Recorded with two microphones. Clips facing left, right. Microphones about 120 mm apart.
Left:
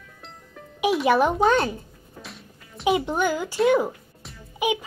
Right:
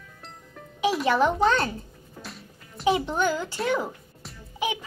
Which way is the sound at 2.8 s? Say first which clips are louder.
Left 1 dB; 20° left (ahead or behind).